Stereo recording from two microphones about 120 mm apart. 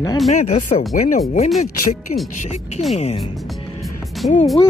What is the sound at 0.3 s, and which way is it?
Speech, 80° left.